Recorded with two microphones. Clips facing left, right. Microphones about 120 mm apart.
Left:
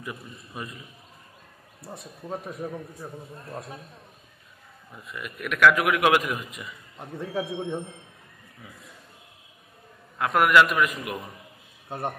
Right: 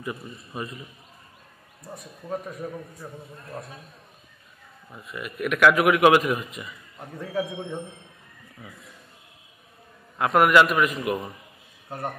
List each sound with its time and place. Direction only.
0.0 s a man's voice: centre (ahead or behind)
1.8 s a man's voice: 25° left (ahead or behind)
5.0 s a man's voice: 5° right (ahead or behind)
7.0 s a man's voice: 20° left (ahead or behind)
10.1 s a man's voice: 5° right (ahead or behind)